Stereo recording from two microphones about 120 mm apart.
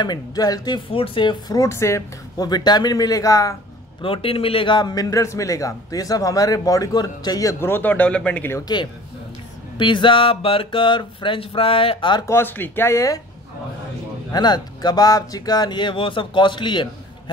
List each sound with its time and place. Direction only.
0.0 s a man's voice: 35° left (ahead or behind)
0.8 s speech: 50° left (ahead or behind)
1.6 s a man's voice: 25° left (ahead or behind)
4.0 s a man's voice: 50° left (ahead or behind); by 7.5 s 30° left (ahead or behind)
7.6 s speech: 15° left (ahead or behind)
8.5 s a man's voice: 35° left (ahead or behind)
12.3 s speech: 15° left (ahead or behind)
14.3 s a man's voice: 35° left (ahead or behind)